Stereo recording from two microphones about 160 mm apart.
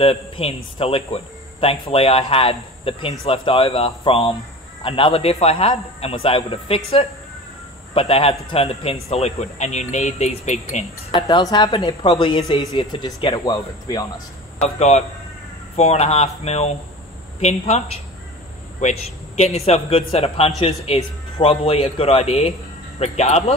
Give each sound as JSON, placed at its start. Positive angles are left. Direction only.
{"t": 0.0, "sound": "a man's voice", "side_deg": 35}
{"t": 11.1, "sound": "speech", "side_deg": 30}
{"t": 14.6, "sound": "a man's voice", "side_deg": 40}